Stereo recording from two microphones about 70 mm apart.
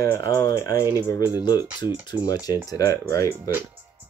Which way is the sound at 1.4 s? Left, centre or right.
Left.